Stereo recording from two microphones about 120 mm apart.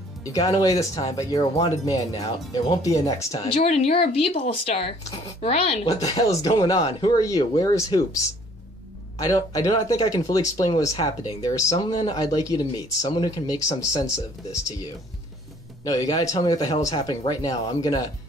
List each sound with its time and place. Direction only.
0.2 s speech: 30° left (ahead or behind)
3.4 s speech: 60° left (ahead or behind)
6.0 s speech: 35° left (ahead or behind)
15.8 s speech: 30° left (ahead or behind)